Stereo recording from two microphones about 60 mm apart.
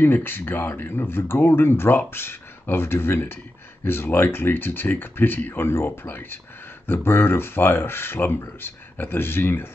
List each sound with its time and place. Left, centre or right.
0.0 s speech: left